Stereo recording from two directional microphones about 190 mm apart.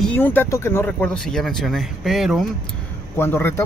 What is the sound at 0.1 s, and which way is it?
Speech, 10° left (ahead or behind).